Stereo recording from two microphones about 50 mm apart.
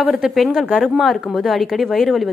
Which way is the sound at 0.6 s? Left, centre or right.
Centre.